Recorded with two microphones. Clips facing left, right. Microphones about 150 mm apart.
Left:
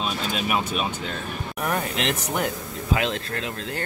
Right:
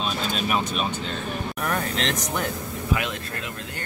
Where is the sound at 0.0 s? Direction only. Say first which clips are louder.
Even; 10° left (ahead or behind).